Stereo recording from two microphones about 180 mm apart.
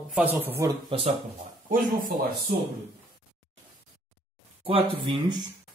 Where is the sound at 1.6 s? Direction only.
50° right (ahead or behind).